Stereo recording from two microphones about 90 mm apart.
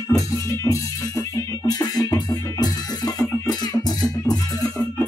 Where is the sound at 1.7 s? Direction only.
45° left (ahead or behind).